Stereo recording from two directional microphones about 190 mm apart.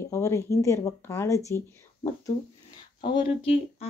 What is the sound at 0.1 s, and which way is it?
Speech, 15° left (ahead or behind).